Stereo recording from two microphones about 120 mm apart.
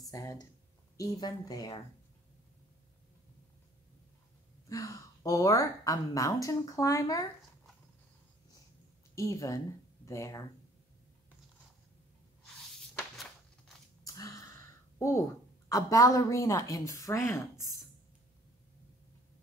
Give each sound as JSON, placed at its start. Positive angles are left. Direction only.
{"t": 0.1, "sound": "a woman's voice", "side_deg": 30}
{"t": 4.6, "sound": "a woman's voice", "side_deg": 30}
{"t": 9.1, "sound": "a woman's voice", "side_deg": 25}
{"t": 14.0, "sound": "a sound", "side_deg": 30}
{"t": 15.7, "sound": "a woman's voice", "side_deg": 30}